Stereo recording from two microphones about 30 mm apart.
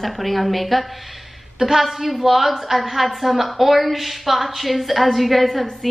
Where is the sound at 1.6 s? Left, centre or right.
Centre.